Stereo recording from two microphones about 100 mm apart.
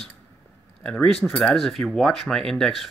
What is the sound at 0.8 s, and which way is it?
Speech, 5° left (ahead or behind).